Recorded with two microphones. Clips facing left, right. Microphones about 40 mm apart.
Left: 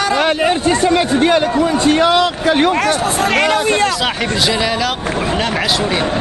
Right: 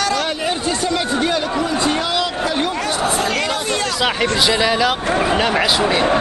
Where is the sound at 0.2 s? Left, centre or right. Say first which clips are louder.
Left 7 dB; left.